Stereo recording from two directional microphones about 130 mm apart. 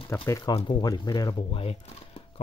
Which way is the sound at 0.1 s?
20° left (ahead or behind).